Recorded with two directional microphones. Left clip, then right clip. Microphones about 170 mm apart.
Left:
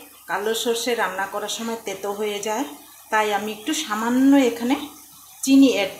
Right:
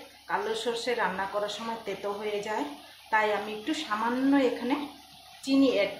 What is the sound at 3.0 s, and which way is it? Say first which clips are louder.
A woman's voice: left 5 dB; 65° left (ahead or behind).